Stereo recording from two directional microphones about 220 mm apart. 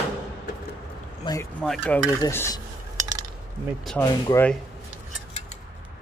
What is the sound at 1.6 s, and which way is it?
Speech, 5° left (ahead or behind).